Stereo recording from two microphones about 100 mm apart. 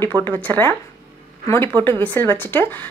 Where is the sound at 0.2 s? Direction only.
20° left (ahead or behind).